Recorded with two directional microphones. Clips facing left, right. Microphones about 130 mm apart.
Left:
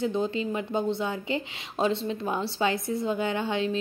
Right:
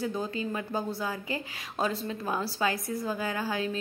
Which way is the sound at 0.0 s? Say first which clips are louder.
Left 5 dB; 25° left (ahead or behind).